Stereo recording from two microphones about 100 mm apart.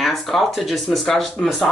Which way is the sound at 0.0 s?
Centre (ahead or behind).